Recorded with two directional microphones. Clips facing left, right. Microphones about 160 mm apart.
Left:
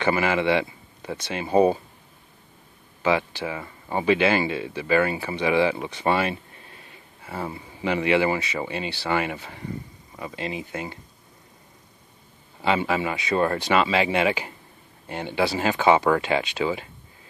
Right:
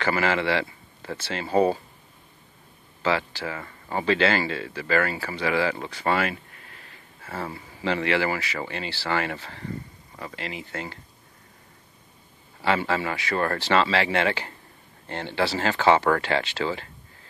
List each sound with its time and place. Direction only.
0.0 s speech: 15° left (ahead or behind)
3.0 s speech: 15° left (ahead or behind)
12.6 s speech: 15° left (ahead or behind)